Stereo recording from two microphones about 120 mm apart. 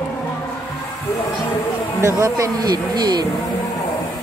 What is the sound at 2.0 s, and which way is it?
Speech, 25° right (ahead or behind).